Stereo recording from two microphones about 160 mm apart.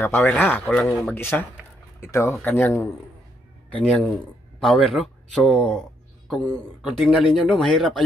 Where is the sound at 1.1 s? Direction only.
15° left (ahead or behind).